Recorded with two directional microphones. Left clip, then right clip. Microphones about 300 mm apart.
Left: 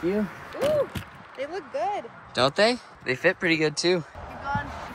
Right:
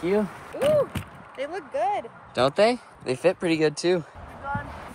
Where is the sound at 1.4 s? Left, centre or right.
Right.